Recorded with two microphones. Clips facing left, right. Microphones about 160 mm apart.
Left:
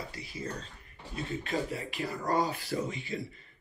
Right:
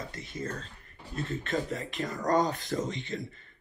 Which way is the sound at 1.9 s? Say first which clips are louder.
Right 3 dB; 40° right (ahead or behind).